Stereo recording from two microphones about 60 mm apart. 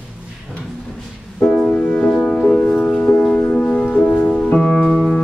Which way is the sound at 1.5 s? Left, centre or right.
Centre.